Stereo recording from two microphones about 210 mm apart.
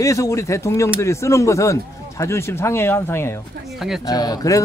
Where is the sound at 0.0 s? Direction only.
15° left (ahead or behind).